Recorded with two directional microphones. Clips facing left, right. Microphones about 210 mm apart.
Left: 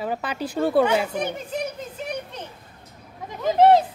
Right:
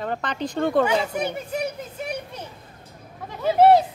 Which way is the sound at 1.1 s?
10° right (ahead or behind).